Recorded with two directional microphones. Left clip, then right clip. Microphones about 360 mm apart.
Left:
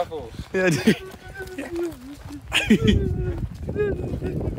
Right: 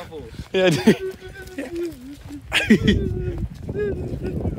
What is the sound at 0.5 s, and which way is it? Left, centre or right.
Speech, centre.